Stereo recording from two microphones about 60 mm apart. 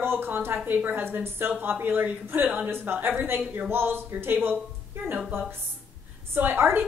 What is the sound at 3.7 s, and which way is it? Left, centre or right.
Speech, right.